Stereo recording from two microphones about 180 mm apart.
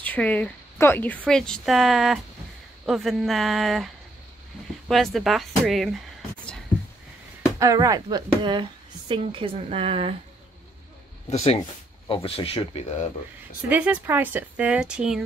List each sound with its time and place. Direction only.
0.0 s speech: 10° left (ahead or behind)
7.5 s a woman's voice: 20° right (ahead or behind)
11.2 s speech: 35° left (ahead or behind)
13.7 s speech: 10° right (ahead or behind)